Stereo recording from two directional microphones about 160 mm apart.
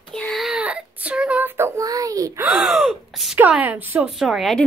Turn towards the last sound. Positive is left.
turn(degrees=0)  # may be behind; listen again after turning